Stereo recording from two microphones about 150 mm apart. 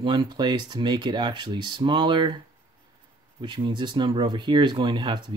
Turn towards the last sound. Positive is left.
turn(degrees=-30)  # may be behind; listen again after turning